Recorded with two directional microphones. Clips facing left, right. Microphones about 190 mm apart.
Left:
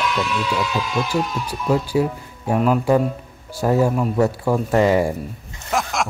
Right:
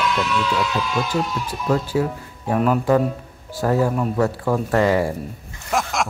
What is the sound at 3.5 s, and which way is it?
Speech, 15° left (ahead or behind).